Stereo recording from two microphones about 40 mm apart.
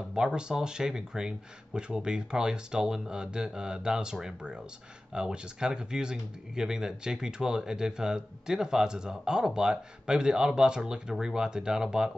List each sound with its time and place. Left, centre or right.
0.1 s speech: right